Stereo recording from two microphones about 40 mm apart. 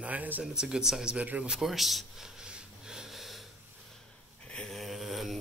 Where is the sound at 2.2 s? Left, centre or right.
Centre.